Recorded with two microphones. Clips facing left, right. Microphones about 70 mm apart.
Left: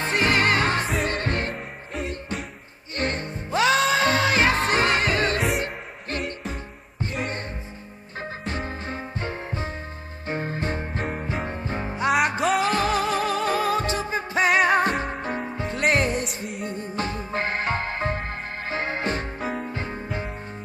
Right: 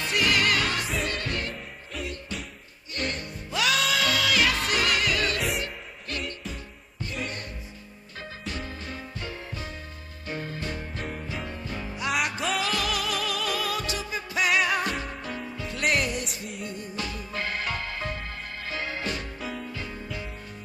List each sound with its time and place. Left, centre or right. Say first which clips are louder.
0.0 s music: left 3 dB; left
8.2 s music: left 5 dB; left
12.4 s music: left 6 dB; left
12.6 s music: left 6 dB; left